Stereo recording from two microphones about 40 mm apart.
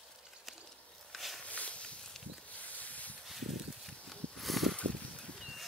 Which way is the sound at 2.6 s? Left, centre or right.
Left.